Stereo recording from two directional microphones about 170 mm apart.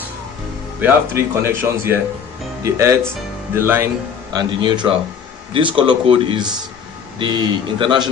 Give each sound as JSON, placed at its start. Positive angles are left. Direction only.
{"t": 0.7, "sound": "speech", "side_deg": -15}
{"t": 4.3, "sound": "a man's voice", "side_deg": -25}